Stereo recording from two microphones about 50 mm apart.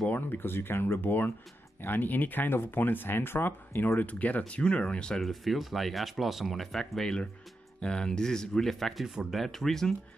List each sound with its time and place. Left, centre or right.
0.1 s speech: left
1.0 s speech: left
4.0 s speech: left
5.2 s speech: centre
9.0 s speech: centre
9.3 s speech: centre